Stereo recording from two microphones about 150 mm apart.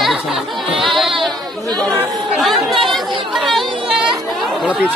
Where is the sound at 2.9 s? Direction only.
Centre (ahead or behind).